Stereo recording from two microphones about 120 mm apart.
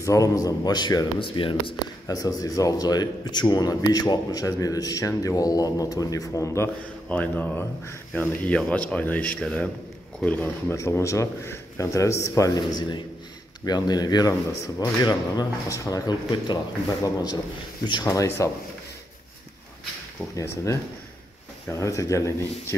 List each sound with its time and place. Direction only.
0.0 s speech: 25° left (ahead or behind); by 1.8 s 45° left (ahead or behind)
2.0 s speech: 30° left (ahead or behind)
7.1 s speech: 15° left (ahead or behind)
20.3 s speech: 25° left (ahead or behind)